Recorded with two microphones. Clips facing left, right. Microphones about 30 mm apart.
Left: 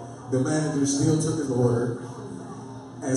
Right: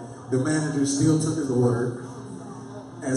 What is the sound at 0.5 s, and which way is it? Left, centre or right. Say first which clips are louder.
A man's voice: right 1 dB; centre.